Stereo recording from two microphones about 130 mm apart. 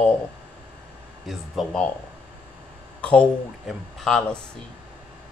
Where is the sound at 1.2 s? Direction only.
Centre (ahead or behind).